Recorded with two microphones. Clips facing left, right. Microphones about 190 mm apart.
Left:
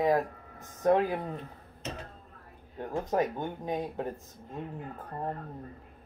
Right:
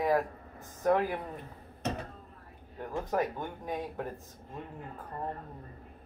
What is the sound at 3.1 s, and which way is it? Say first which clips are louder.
Speech: left 3 dB; 25° left (ahead or behind).